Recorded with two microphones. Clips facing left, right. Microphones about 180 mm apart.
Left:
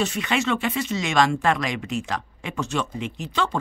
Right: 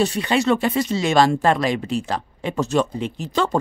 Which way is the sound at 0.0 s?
35° right (ahead or behind).